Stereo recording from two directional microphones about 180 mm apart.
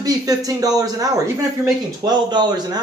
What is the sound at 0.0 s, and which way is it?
A man's voice, 20° right (ahead or behind).